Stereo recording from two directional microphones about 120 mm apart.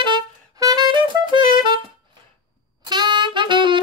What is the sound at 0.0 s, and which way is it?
Music, 35° right (ahead or behind).